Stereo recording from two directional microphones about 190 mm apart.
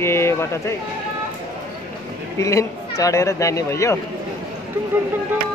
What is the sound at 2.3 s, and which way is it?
A man's voice, 15° left (ahead or behind).